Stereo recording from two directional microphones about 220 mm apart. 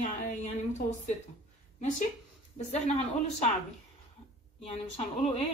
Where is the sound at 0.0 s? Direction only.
30° left (ahead or behind).